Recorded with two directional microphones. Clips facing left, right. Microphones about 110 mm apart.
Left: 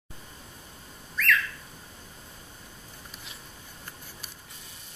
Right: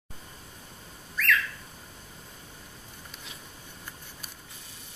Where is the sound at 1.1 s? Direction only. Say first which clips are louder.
Even; centre (ahead or behind).